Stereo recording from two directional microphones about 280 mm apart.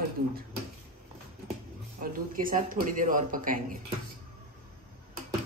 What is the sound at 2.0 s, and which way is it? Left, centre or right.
A woman's voice, right.